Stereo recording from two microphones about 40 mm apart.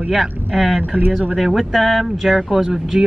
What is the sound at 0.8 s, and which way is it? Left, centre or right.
Speech, right.